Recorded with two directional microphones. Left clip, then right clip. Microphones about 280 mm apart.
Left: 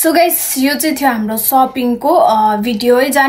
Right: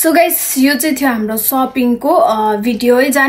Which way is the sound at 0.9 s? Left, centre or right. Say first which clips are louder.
Left 1 dB; left.